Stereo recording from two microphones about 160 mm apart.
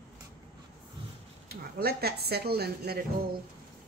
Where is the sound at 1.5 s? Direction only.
75° right (ahead or behind).